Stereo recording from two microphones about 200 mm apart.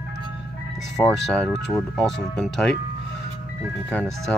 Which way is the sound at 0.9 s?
5° left (ahead or behind).